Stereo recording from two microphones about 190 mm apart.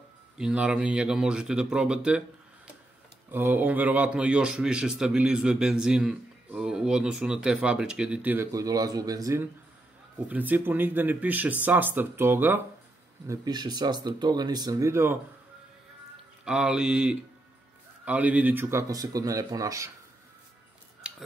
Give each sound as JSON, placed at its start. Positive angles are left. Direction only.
{"t": 0.4, "sound": "speech", "side_deg": -5}
{"t": 13.3, "sound": "speech", "side_deg": -20}
{"t": 16.4, "sound": "speech", "side_deg": -5}